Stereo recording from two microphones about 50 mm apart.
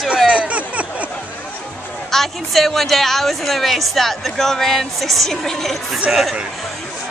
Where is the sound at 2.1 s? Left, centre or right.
Centre.